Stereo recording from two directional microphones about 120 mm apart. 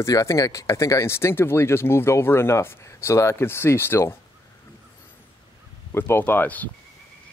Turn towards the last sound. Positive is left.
turn(degrees=15)  # may be behind; listen again after turning